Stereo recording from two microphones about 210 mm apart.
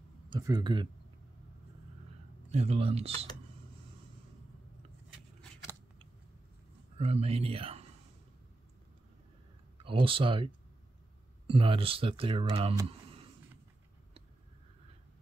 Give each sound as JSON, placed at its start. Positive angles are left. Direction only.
{"t": 0.3, "sound": "speech", "side_deg": -20}
{"t": 2.5, "sound": "speech", "side_deg": -30}
{"t": 7.0, "sound": "speech", "side_deg": -30}
{"t": 9.8, "sound": "speech", "side_deg": -25}